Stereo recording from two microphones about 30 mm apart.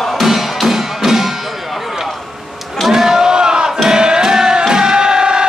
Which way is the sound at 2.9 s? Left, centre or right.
Centre.